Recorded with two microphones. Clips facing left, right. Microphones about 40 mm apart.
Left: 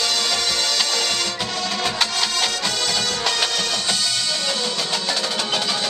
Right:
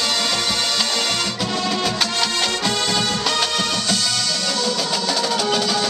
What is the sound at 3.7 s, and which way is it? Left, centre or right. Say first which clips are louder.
Music: right 1 dB; centre.